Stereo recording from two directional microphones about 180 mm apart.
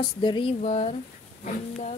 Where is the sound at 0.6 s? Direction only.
40° left (ahead or behind).